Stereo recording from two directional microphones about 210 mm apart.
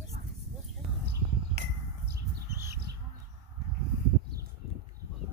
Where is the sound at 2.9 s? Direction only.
50° right (ahead or behind).